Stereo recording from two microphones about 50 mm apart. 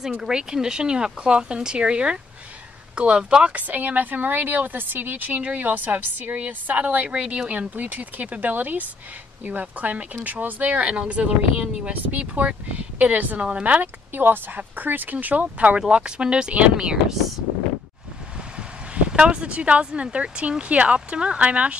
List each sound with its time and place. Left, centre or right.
0.2 s speech: centre
3.5 s a woman's voice: right
7.2 s a woman's voice: right
14.1 s a woman's voice: right; by 17.2 s centre
18.6 s speech: centre